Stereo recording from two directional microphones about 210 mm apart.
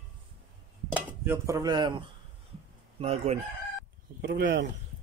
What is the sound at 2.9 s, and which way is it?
Chicken, 30° right (ahead or behind).